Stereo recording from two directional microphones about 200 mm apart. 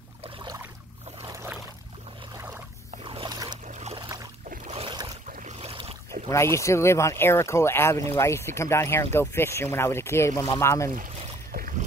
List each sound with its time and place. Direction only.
0.2 s boat: 25° right (ahead or behind)
3.1 s boat: 25° right (ahead or behind)
3.6 s boat: 35° right (ahead or behind)
6.2 s speech: 15° left (ahead or behind)
11.5 s boat: 45° right (ahead or behind)